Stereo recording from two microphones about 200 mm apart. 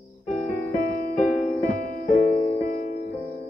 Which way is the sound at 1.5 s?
40° left (ahead or behind).